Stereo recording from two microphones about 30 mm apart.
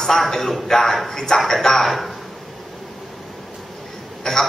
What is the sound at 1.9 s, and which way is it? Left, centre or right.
Speech, centre.